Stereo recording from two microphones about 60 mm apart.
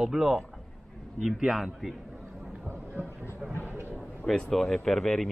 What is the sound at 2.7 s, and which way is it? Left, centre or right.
Speech, right.